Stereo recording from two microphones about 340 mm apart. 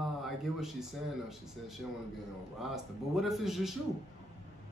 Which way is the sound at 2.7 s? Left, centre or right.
Centre.